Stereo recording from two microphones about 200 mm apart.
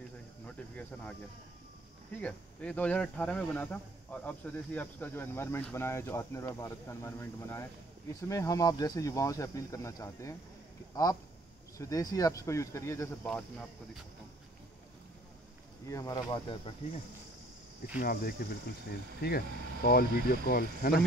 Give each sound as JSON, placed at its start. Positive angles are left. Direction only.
{"t": 0.5, "sound": "speech", "side_deg": 10}
{"t": 2.1, "sound": "speech", "side_deg": 5}
{"t": 15.9, "sound": "speech", "side_deg": 15}
{"t": 17.9, "sound": "speech", "side_deg": 45}